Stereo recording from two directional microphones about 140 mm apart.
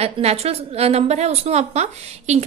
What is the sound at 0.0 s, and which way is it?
A woman's voice, 50° right (ahead or behind).